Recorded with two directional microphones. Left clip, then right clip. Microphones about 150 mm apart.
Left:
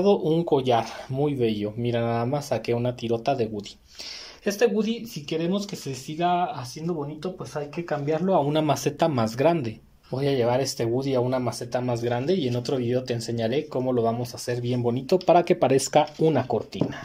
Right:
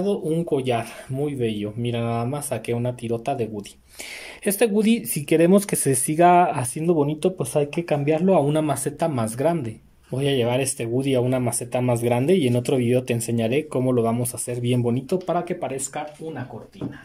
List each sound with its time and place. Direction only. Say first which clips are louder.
0.0 s speech: left 3 dB; 5° left (ahead or behind)
4.5 s speech: right 3 dB; 35° right (ahead or behind); by 8.0 s 50° right (ahead or behind)
8.1 s speech: right 3 dB; 15° right (ahead or behind)
8.6 s speech: left 1 dB; centre (ahead or behind)
15.1 s speech: left 9 dB; 10° left (ahead or behind)
15.9 s speech: left 10 dB; 50° left (ahead or behind)